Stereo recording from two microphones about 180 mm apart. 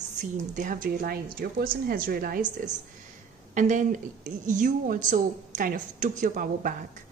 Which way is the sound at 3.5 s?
45° right (ahead or behind).